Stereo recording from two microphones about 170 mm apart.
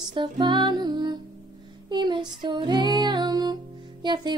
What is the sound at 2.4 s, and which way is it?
Music, 25° right (ahead or behind).